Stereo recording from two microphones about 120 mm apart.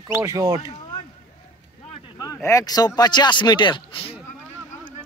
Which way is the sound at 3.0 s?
35° left (ahead or behind).